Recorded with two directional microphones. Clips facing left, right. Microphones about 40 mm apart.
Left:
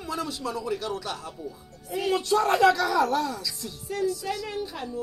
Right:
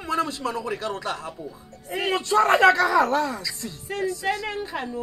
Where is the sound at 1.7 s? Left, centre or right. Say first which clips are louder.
Right 1 dB; right.